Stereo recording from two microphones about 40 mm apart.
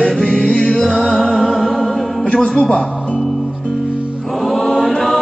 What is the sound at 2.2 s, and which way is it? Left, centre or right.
Music, left.